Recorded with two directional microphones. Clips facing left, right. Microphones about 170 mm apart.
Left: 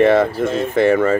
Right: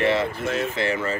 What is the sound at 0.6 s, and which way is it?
Speech, 50° left (ahead or behind).